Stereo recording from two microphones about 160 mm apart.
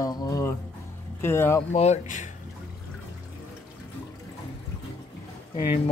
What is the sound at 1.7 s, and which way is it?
Speech, 45° left (ahead or behind).